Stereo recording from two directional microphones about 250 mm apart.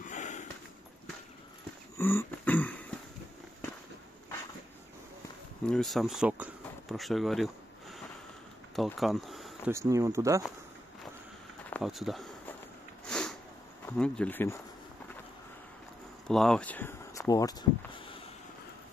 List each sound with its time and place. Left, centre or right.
0.0 s a sound: left
2.0 s throat clearing: centre
5.7 s speech: centre
9.7 s speech: centre
11.7 s a sound: centre
13.0 s sniff: centre
13.8 s speech: centre
16.3 s speech: centre; by 18.3 s left